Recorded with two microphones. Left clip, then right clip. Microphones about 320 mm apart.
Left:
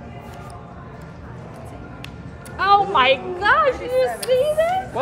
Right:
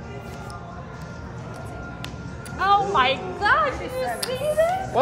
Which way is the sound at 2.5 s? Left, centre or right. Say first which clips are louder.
Left 3 dB; left.